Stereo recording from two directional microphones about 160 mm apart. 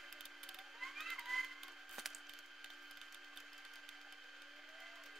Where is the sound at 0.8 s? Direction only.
Centre (ahead or behind).